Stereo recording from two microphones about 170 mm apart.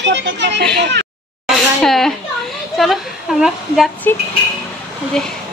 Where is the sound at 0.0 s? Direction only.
90° right.